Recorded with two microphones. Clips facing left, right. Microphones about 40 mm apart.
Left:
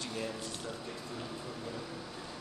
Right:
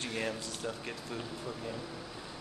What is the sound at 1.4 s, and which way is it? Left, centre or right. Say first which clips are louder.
Speech: right 2 dB; centre.